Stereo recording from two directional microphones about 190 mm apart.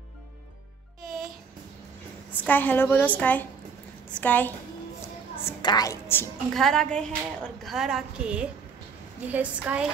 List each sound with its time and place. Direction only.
2.4 s a woman's voice: 10° left (ahead or behind)
5.3 s a woman's voice: 20° left (ahead or behind)
6.5 s a woman's voice: centre (ahead or behind)